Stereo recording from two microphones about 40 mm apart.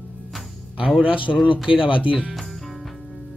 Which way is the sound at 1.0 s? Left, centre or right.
Right.